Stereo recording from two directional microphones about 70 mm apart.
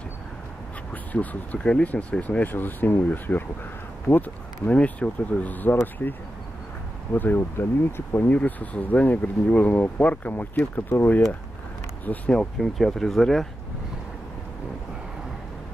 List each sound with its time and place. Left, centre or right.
1.1 s speech: left
8.3 s speech: left
12.3 s speech: centre